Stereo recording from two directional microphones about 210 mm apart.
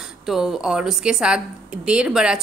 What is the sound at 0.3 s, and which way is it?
A woman's voice, centre (ahead or behind).